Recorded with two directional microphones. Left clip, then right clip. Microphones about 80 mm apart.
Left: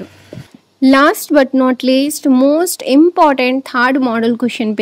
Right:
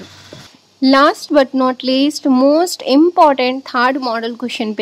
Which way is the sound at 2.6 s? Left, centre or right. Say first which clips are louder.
Left 1 dB; left.